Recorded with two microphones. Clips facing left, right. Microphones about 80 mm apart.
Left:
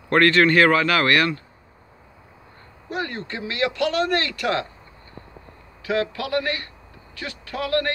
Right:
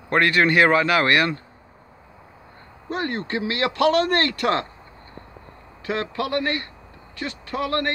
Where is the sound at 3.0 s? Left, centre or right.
Right.